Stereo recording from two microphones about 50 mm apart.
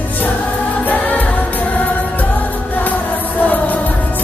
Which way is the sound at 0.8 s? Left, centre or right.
Left.